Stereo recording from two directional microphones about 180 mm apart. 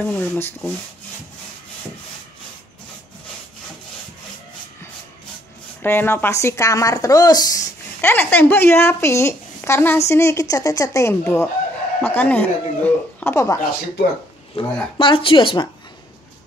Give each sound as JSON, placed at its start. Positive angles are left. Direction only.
{"t": 0.0, "sound": "speech", "side_deg": 10}
{"t": 5.8, "sound": "speech", "side_deg": 10}
{"t": 14.5, "sound": "speech", "side_deg": 35}